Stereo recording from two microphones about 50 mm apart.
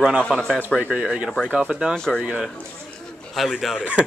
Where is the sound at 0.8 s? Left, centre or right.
Right.